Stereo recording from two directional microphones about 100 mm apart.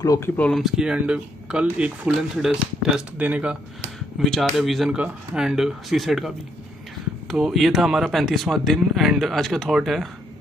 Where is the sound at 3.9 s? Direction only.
Centre (ahead or behind).